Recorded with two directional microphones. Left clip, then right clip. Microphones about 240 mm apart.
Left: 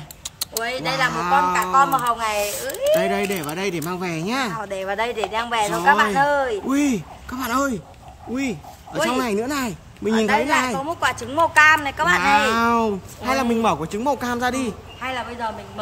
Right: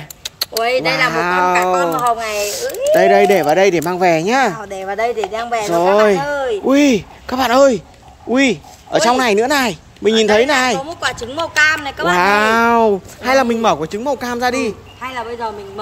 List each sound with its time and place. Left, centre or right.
0.2 s speech: centre
2.9 s speech: centre
4.6 s speech: centre
6.7 s speech: centre
10.8 s speech: centre
12.2 s speech: centre